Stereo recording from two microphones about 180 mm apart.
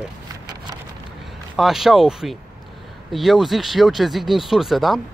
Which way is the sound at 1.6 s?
Centre (ahead or behind).